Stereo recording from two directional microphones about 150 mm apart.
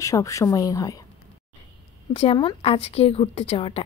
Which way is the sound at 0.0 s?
20° left (ahead or behind).